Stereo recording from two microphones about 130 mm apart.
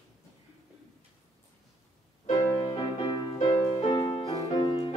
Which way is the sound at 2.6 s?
35° left (ahead or behind).